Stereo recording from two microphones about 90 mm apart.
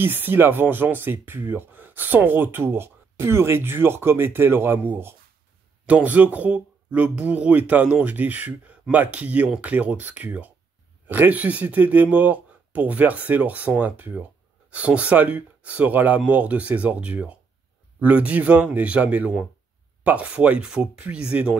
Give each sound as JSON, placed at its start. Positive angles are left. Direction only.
{"t": 0.0, "sound": "speech", "side_deg": -25}